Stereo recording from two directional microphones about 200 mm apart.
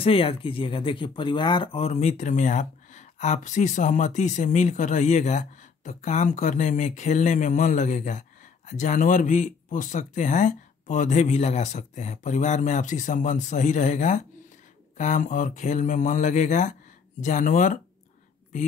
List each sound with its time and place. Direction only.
0.0 s speech: 25° left (ahead or behind)